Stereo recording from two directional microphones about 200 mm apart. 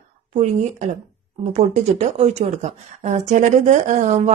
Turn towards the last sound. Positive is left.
turn(degrees=-35)  # may be behind; listen again after turning